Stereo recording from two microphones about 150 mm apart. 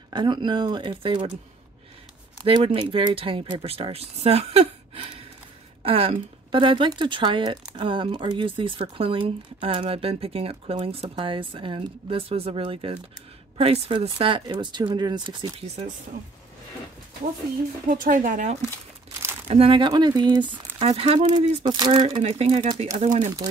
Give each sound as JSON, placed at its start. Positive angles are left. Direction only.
{"t": 0.1, "sound": "speech", "side_deg": -30}
{"t": 2.4, "sound": "speech", "side_deg": -35}
{"t": 17.8, "sound": "a woman's voice", "side_deg": -65}
{"t": 19.4, "sound": "speech", "side_deg": -40}
{"t": 22.0, "sound": "speech", "side_deg": -40}
{"t": 22.9, "sound": "a woman's voice", "side_deg": -55}